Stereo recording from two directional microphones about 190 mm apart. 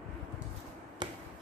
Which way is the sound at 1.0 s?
20° right (ahead or behind).